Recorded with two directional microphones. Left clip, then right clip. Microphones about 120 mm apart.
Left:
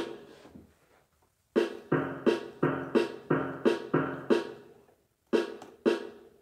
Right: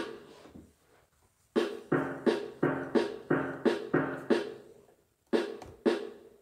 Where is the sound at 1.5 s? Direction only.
20° left (ahead or behind).